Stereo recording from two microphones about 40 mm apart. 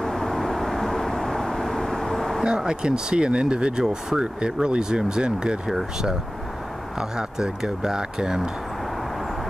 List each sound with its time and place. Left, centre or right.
0.0 s vehicle: centre
2.4 s speech: right
5.7 s speech: centre